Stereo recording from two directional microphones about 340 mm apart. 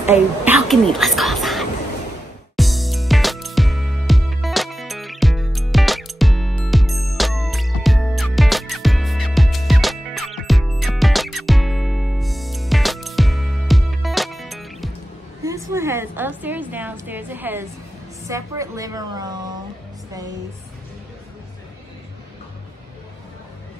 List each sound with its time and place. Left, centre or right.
0.5 s speech: centre
2.5 s music: centre
18.2 s a sound: centre